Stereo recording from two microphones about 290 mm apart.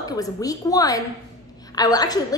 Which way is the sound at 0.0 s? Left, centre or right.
Centre.